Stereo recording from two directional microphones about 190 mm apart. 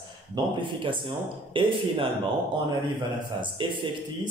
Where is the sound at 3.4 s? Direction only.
25° right (ahead or behind).